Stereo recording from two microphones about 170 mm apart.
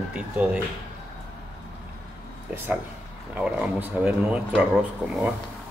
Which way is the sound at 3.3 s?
10° right (ahead or behind).